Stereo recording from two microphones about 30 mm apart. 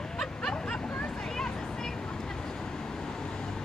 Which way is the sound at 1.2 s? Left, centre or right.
Centre.